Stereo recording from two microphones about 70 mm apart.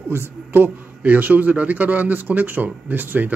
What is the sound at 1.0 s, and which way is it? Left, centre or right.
Speech, right.